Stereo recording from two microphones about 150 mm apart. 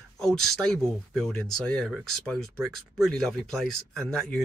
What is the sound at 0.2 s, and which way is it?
Speech, 5° left (ahead or behind).